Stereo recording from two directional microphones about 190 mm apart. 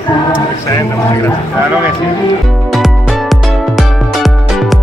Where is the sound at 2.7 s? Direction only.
Centre (ahead or behind).